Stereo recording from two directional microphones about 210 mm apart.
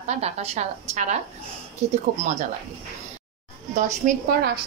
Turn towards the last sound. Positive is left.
turn(degrees=-45)  # may be behind; listen again after turning